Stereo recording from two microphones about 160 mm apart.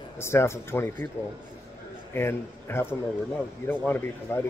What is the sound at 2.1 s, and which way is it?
A man's voice, 15° left (ahead or behind).